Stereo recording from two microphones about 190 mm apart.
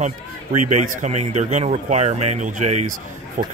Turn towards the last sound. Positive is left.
turn(degrees=-45)  # may be behind; listen again after turning